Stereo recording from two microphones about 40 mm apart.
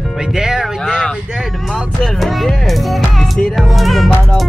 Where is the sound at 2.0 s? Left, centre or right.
Centre.